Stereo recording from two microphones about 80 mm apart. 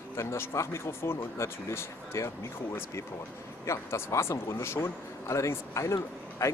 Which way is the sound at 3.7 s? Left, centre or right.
Left.